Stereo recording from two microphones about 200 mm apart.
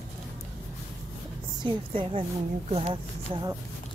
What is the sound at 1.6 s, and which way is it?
A woman's voice, 30° right (ahead or behind).